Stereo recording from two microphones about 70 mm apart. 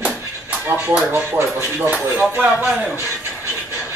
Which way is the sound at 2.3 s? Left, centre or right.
Centre.